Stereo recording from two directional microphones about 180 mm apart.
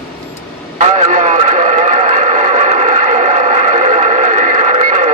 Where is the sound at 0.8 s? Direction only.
40° right (ahead or behind).